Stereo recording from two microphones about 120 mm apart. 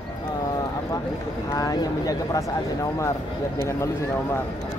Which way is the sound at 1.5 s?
30° left (ahead or behind).